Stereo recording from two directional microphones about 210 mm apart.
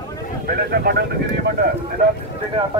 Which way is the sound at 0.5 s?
45° right (ahead or behind).